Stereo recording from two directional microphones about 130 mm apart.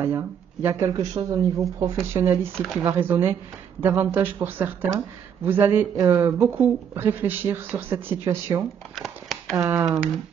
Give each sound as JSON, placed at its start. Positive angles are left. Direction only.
{"t": 0.0, "sound": "speech", "side_deg": -20}
{"t": 2.1, "sound": "speech", "side_deg": -20}
{"t": 2.5, "sound": "speech", "side_deg": 0}
{"t": 2.8, "sound": "speech", "side_deg": -15}
{"t": 8.9, "sound": "a sound", "side_deg": 0}
{"t": 9.8, "sound": "speech", "side_deg": -5}